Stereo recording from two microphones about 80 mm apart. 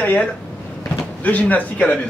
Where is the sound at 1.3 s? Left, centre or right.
Centre.